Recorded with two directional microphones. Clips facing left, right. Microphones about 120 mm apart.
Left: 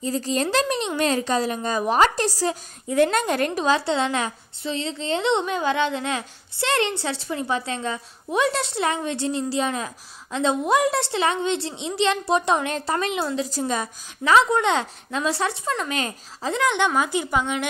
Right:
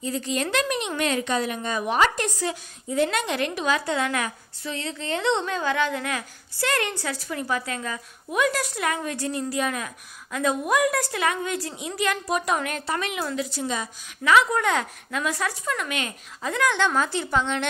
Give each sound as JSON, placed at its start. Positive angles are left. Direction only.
{"t": 0.0, "sound": "a woman's voice", "side_deg": 35}
{"t": 13.5, "sound": "a woman's voice", "side_deg": 45}
{"t": 14.2, "sound": "a woman's voice", "side_deg": 30}